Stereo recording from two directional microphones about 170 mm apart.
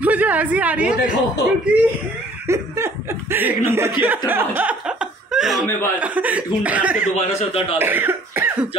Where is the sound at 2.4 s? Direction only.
15° right (ahead or behind).